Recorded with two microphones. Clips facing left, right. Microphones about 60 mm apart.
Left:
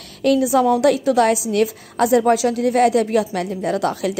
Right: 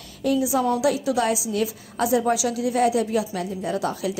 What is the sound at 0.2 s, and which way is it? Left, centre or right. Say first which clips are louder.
A woman's voice: left 6 dB; left.